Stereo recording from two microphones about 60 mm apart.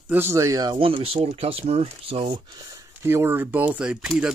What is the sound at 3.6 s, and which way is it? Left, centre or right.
Speech, centre.